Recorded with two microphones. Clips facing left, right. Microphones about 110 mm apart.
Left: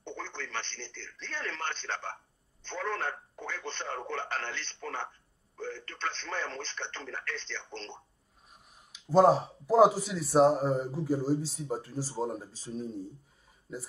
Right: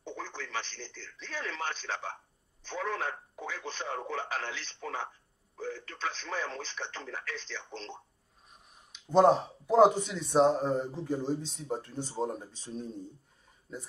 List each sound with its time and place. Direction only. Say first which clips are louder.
0.0 s speech: even; 5° right (ahead or behind)